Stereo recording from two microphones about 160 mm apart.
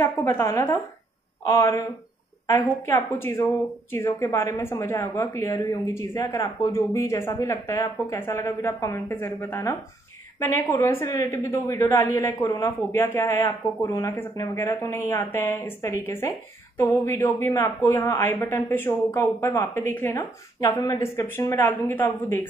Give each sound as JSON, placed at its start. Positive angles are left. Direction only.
{"t": 0.0, "sound": "a woman's voice", "side_deg": 20}
{"t": 20.6, "sound": "speech", "side_deg": 25}